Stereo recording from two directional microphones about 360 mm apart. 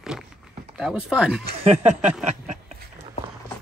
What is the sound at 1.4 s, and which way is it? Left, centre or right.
Speech, right.